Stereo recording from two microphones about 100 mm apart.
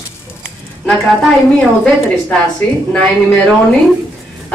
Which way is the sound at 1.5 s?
10° left (ahead or behind).